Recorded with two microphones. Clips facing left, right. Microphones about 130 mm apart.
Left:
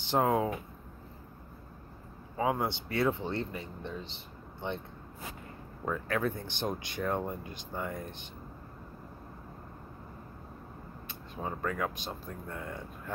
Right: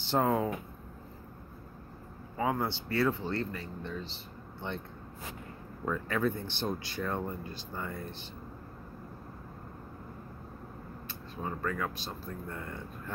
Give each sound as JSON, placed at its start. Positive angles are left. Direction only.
{"t": 0.1, "sound": "speech", "side_deg": 10}
{"t": 2.3, "sound": "speech", "side_deg": 15}
{"t": 5.9, "sound": "speech", "side_deg": 10}
{"t": 11.1, "sound": "speech", "side_deg": 15}